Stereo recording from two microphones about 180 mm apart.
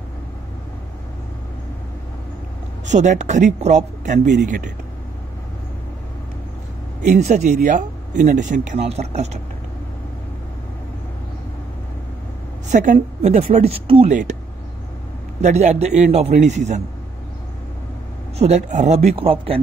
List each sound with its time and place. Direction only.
2.9 s speech: 40° right (ahead or behind)
7.1 s speech: 40° right (ahead or behind)
12.7 s speech: 45° right (ahead or behind)
15.4 s speech: 40° right (ahead or behind)
18.4 s speech: 40° right (ahead or behind)